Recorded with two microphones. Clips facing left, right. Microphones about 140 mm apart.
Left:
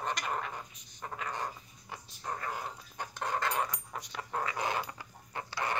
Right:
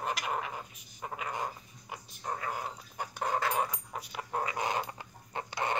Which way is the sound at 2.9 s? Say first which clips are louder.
Right 3 dB; 10° right (ahead or behind).